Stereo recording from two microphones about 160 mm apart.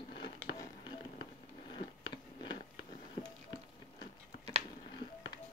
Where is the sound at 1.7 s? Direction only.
30° left (ahead or behind).